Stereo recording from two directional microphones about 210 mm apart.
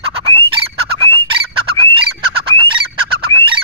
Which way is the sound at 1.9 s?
25° right (ahead or behind).